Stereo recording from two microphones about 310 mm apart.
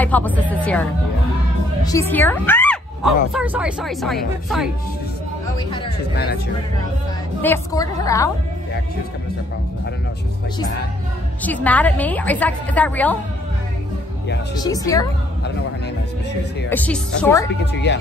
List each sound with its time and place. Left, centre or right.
0.0 s a woman's voice: centre
1.9 s a woman's voice: centre
6.1 s speech: left
7.4 s a woman's voice: centre
11.4 s a woman's voice: centre
14.5 s a woman's voice: centre
16.7 s a woman's voice: centre